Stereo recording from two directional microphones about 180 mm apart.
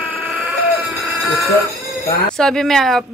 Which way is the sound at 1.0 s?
Centre (ahead or behind).